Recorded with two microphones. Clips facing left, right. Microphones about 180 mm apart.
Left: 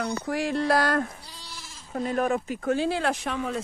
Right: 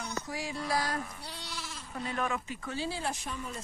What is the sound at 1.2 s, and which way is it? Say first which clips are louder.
Sheep: right 3 dB; 70° right (ahead or behind).